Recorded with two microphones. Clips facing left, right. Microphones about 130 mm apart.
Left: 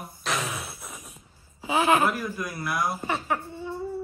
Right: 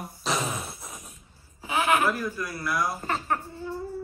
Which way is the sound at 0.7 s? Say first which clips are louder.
Even; 15° right (ahead or behind).